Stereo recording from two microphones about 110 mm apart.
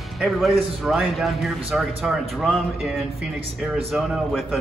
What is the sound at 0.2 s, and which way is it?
A man's voice, centre (ahead or behind).